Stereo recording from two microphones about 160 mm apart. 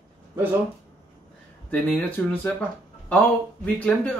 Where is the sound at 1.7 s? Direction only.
5° left (ahead or behind).